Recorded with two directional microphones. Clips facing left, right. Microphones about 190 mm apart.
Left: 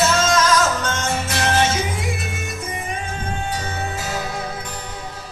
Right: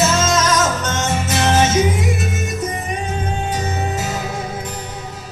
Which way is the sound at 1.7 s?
45° right (ahead or behind).